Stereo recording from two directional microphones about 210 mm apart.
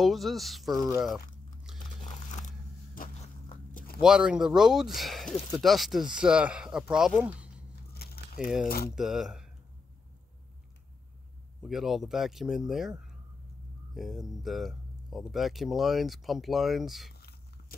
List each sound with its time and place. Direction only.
0.0 s speech: centre (ahead or behind)
2.0 s biting: 40° left (ahead or behind)
4.0 s speech: 5° right (ahead or behind)
7.9 s a sound: 45° left (ahead or behind)
8.6 s speech: 45° left (ahead or behind)
8.9 s speech: centre (ahead or behind)
11.6 s speech: centre (ahead or behind)
17.1 s a sound: 50° left (ahead or behind)